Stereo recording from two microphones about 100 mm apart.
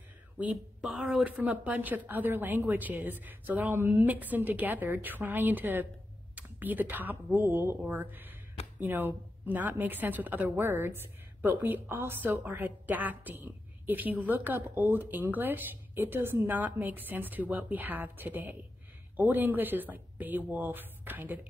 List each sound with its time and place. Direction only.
0.4 s speech: 10° right (ahead or behind)
1.2 s a woman's voice: 15° right (ahead or behind)